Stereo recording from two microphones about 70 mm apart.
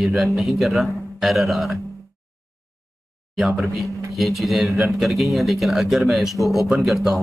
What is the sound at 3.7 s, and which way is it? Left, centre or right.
Speech, centre.